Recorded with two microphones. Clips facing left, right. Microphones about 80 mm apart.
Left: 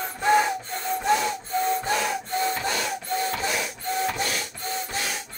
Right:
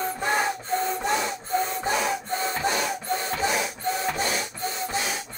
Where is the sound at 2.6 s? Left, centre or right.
Centre.